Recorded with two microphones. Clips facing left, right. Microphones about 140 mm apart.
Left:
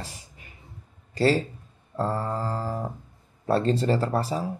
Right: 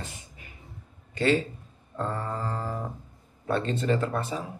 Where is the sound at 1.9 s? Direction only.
35° left (ahead or behind).